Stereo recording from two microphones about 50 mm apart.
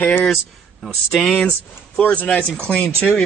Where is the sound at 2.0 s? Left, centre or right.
Left.